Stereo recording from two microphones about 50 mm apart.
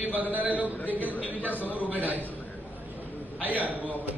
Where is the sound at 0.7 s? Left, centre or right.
Left.